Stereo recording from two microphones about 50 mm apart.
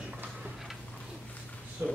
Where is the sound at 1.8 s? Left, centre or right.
Right.